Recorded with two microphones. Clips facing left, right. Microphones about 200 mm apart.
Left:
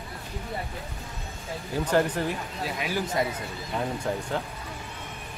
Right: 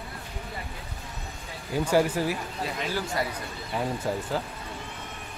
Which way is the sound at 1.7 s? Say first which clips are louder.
Right 1 dB; 10° right (ahead or behind).